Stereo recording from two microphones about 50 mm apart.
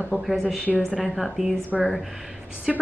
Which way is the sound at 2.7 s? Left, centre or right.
Centre.